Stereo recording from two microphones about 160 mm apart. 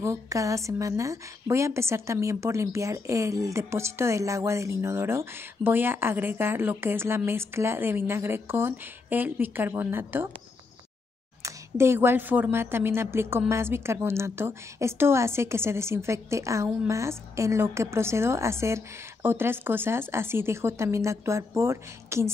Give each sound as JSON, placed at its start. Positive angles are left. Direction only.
{"t": 0.0, "sound": "a woman's voice", "side_deg": -20}
{"t": 11.4, "sound": "a woman's voice", "side_deg": -15}